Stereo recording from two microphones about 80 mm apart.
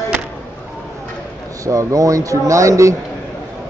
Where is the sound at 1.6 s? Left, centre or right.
Right.